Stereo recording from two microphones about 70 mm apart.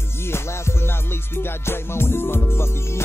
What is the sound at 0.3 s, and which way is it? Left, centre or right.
Music, left.